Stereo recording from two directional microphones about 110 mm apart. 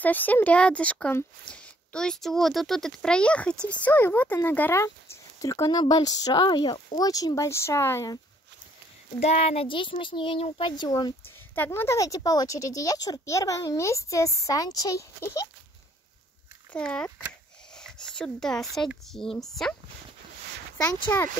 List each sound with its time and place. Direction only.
0.0 s speech: 15° left (ahead or behind)
9.2 s a child's voice: 75° left (ahead or behind); by 11.1 s 45° left (ahead or behind)
11.5 s speech: 20° left (ahead or behind)
16.7 s speech: 10° left (ahead or behind)
21.1 s speech: 25° left (ahead or behind)